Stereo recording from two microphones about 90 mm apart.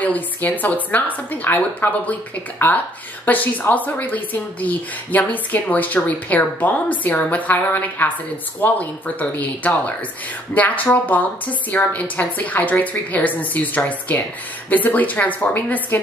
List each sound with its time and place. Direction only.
0.0 s a woman's voice: 15° left (ahead or behind)